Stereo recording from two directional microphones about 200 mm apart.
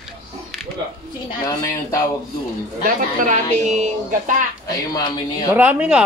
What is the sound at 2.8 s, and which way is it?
Speech, 40° right (ahead or behind).